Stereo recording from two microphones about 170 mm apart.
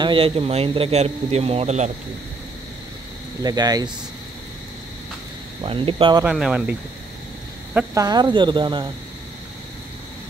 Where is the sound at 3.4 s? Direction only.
25° right (ahead or behind).